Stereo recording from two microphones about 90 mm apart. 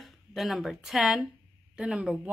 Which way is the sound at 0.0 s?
Centre (ahead or behind).